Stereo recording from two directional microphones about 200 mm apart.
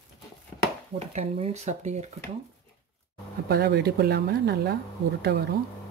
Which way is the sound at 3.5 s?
55° right (ahead or behind).